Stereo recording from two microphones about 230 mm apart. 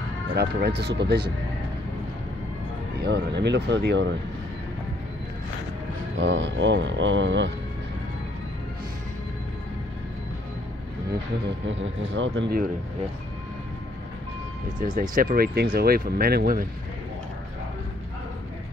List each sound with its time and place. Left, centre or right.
0.4 s speech: right
3.0 s speech: right
6.1 s speech: right
12.0 s speech: right
15.0 s speech: right